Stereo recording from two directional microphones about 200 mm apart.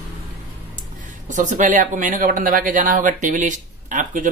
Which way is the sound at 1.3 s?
40° right (ahead or behind).